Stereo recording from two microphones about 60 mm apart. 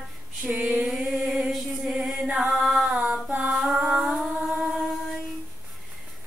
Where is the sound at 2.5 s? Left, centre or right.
Centre.